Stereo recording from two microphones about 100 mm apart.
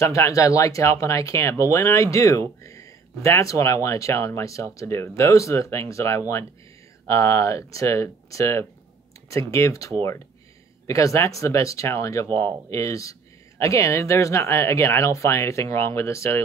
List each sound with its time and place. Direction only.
0.0 s speech: 30° left (ahead or behind)